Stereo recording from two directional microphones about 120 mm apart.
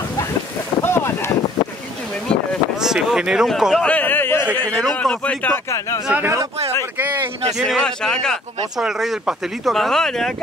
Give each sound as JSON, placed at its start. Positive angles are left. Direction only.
{"t": 0.8, "sound": "a sound", "side_deg": 20}
{"t": 2.8, "sound": "speech", "side_deg": -5}
{"t": 3.8, "sound": "a man's voice", "side_deg": 15}
{"t": 4.7, "sound": "a man's voice", "side_deg": 5}
{"t": 6.0, "sound": "speech", "side_deg": -10}
{"t": 7.5, "sound": "speech", "side_deg": 0}